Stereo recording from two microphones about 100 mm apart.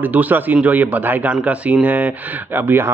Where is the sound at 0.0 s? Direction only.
15° right (ahead or behind).